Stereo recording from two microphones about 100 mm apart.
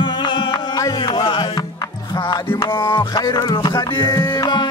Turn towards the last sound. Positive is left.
turn(degrees=45)  # may be behind; listen again after turning